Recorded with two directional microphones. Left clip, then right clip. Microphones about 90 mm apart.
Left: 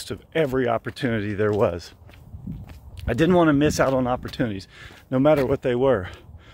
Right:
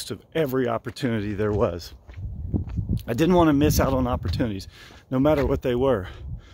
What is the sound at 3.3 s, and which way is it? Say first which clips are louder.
Speech: even; 40° right (ahead or behind).